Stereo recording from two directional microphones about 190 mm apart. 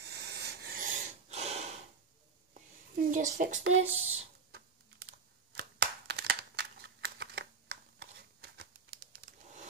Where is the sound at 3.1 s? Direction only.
40° right (ahead or behind).